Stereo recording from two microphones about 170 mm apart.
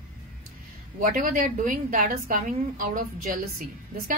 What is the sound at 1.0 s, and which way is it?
A woman's voice, 55° right (ahead or behind).